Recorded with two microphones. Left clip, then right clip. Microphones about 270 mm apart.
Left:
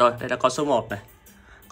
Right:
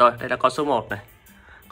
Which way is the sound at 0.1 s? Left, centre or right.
Centre.